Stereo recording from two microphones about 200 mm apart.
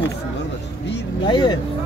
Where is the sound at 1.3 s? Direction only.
20° left (ahead or behind).